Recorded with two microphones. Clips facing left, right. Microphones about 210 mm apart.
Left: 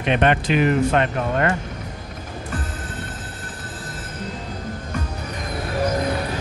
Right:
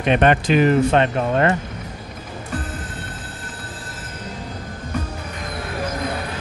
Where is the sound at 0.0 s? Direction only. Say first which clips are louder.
Right 2 dB; 40° right (ahead or behind).